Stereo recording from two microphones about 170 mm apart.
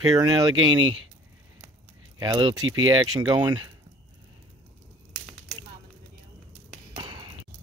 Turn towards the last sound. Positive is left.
turn(degrees=-25)  # may be behind; listen again after turning